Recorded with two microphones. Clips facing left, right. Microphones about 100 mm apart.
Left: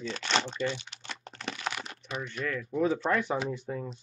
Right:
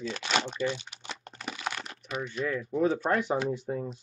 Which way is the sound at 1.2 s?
5° right (ahead or behind).